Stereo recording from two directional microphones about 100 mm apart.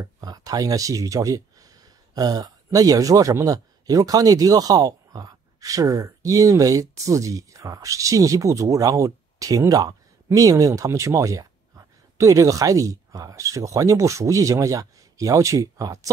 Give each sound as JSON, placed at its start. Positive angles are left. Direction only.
{"t": 0.2, "sound": "a man's voice", "side_deg": -40}